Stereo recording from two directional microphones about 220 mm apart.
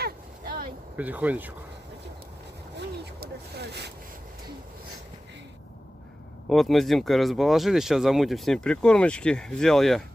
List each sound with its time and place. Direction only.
0.0 s vehicle: 40° right (ahead or behind)
0.9 s speech: 5° right (ahead or behind)
3.2 s speech: 50° right (ahead or behind)
6.5 s speech: centre (ahead or behind)